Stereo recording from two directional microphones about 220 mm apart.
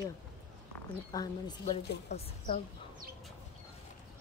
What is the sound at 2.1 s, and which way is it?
Speech, 35° left (ahead or behind).